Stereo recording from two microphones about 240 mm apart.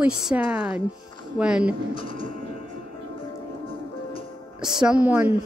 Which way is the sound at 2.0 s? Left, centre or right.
Left.